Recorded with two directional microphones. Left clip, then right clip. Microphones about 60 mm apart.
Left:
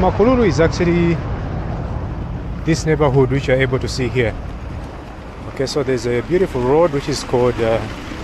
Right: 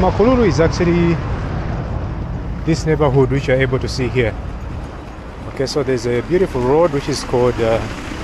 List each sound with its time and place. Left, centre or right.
0.0 s speech: centre
2.6 s speech: left
5.6 s speech: centre